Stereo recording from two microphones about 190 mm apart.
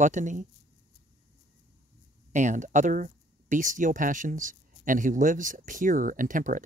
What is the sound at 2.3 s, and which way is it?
Speech, 40° right (ahead or behind).